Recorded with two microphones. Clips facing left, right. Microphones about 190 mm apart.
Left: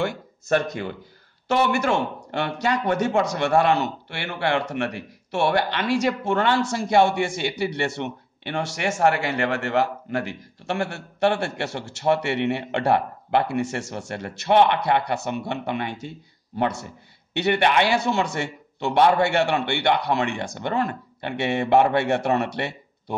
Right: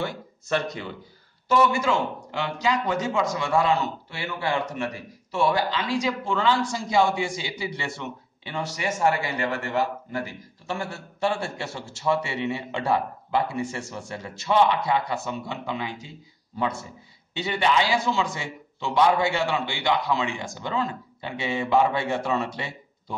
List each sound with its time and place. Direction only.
0.0 s speech: 50° left (ahead or behind)
1.5 s a man's voice: 65° left (ahead or behind)